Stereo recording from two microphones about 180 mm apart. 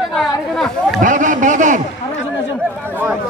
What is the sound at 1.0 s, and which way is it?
Speech, 45° right (ahead or behind).